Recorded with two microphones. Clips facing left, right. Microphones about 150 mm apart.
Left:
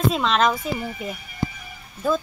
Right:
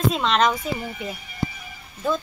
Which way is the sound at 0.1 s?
Centre (ahead or behind).